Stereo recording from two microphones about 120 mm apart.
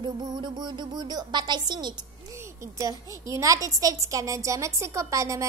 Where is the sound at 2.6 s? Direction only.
25° right (ahead or behind).